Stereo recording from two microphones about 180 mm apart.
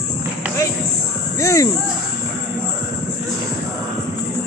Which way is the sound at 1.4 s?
15° left (ahead or behind).